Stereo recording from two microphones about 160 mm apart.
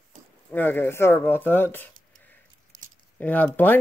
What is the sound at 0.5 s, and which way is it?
Speech, 10° left (ahead or behind).